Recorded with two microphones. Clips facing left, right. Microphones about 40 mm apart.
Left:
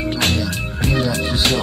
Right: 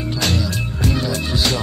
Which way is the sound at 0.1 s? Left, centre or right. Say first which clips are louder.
Right 1 dB; left.